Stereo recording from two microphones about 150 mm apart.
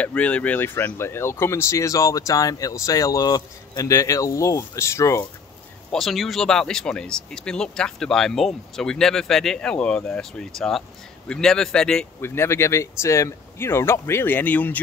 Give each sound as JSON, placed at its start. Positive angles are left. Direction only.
{"t": 0.0, "sound": "speech", "side_deg": 10}
{"t": 5.9, "sound": "speech", "side_deg": 0}
{"t": 12.2, "sound": "speech", "side_deg": 15}